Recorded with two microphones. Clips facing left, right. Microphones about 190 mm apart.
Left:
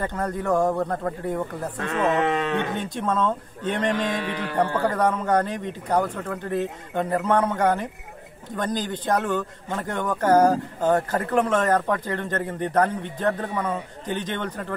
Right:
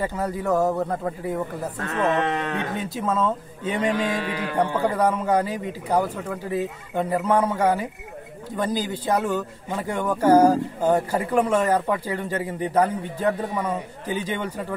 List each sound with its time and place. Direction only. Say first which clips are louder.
0.0 s speech: right 1 dB; 5° right (ahead or behind)
1.8 s speech: left 1 dB; 20° left (ahead or behind)
2.7 s speech: even; 5° right (ahead or behind)